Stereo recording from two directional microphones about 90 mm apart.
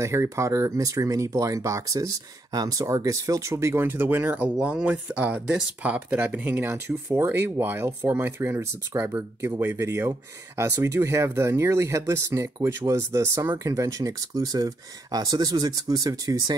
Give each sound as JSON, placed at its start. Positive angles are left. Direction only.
{"t": 0.0, "sound": "speech", "side_deg": -35}